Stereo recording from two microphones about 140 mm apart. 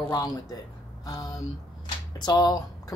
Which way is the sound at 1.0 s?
25° left (ahead or behind).